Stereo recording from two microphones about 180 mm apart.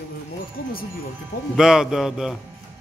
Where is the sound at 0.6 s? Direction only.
65° left (ahead or behind).